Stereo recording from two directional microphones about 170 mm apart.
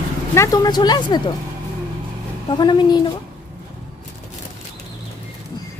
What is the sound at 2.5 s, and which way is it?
Speech, 25° left (ahead or behind).